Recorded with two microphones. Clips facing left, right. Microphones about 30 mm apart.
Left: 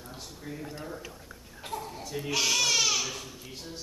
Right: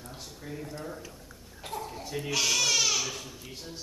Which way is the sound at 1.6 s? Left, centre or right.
Centre.